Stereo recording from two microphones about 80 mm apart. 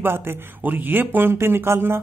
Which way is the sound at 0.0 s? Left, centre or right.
Right.